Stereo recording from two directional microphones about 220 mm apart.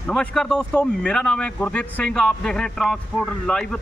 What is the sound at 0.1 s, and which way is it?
Speech, 5° left (ahead or behind).